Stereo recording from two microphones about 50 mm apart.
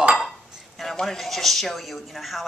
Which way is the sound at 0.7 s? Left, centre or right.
Centre.